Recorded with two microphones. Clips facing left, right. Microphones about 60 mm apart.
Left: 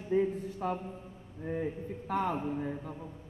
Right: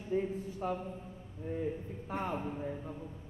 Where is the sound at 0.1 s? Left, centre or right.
Left.